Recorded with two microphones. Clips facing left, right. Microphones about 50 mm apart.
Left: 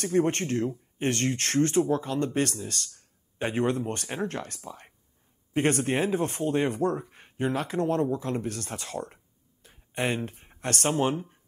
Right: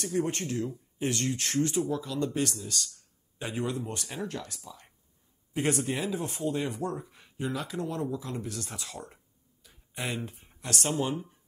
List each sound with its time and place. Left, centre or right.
0.0 s speech: left